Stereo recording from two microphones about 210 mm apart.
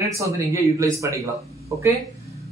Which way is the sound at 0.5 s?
15° right (ahead or behind).